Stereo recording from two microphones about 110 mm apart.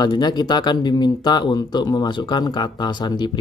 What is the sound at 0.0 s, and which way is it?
Speech, 40° left (ahead or behind).